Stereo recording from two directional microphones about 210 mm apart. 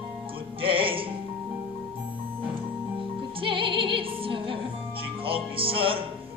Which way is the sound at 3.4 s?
25° right (ahead or behind).